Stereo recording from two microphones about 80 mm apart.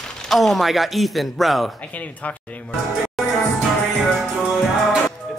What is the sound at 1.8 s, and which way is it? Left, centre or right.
Speech, centre.